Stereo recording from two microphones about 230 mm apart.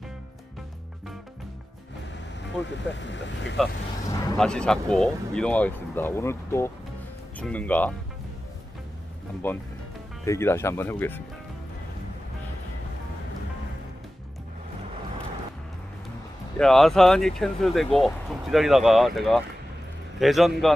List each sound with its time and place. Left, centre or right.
2.6 s speech: left
4.4 s speech: centre
9.4 s speech: centre
16.5 s speech: centre